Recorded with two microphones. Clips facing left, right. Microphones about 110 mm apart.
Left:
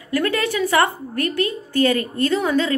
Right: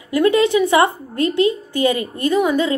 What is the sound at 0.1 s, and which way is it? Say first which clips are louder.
A woman's voice: right 7 dB; 20° right (ahead or behind).